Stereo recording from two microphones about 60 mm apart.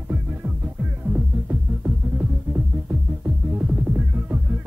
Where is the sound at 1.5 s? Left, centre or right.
Right.